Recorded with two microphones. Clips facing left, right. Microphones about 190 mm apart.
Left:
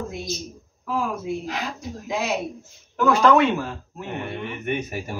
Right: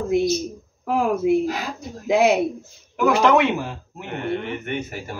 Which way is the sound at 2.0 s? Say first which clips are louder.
Right 10 dB; 65° right (ahead or behind).